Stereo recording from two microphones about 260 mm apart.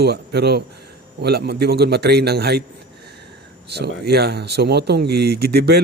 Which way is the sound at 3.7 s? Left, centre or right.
Right.